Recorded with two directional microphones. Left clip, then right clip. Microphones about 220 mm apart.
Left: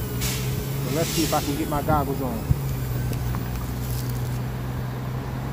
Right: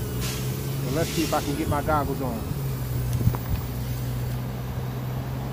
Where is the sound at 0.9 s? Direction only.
10° right (ahead or behind).